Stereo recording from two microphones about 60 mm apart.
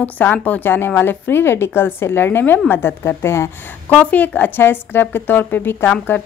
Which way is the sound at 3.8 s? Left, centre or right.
Left.